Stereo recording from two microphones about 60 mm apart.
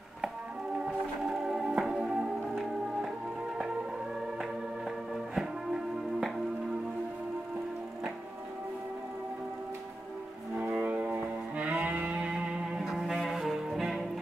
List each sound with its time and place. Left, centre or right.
0.7 s music: centre
5.1 s music: centre
10.6 s music: right; by 12.8 s centre
12.8 s music: centre